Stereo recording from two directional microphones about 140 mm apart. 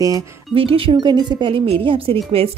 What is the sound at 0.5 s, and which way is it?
Speech, 40° right (ahead or behind).